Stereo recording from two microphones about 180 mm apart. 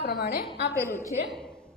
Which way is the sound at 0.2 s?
60° left (ahead or behind).